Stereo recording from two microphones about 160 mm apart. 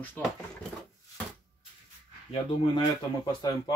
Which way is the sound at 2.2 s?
35° left (ahead or behind).